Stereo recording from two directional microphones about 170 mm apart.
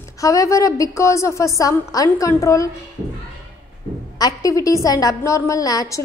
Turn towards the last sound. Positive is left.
turn(degrees=20)  # may be behind; listen again after turning